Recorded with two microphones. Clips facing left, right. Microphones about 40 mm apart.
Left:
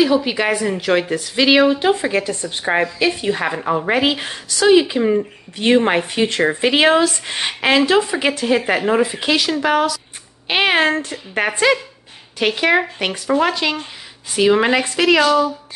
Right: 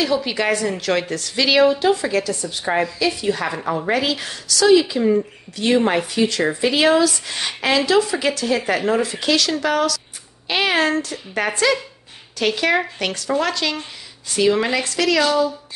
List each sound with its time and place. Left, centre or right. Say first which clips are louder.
0.0 s a woman's voice: left 4 dB; centre